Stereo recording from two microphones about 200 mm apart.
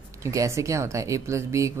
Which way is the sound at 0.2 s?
15° right (ahead or behind).